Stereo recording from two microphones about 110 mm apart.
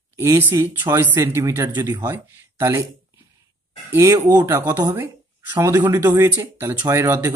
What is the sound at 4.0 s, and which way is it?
Speech, 25° right (ahead or behind).